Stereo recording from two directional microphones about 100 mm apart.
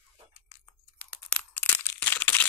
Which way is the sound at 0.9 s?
15° left (ahead or behind).